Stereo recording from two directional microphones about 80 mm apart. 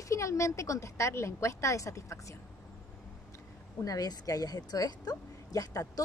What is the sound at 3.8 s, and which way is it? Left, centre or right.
Speech, left.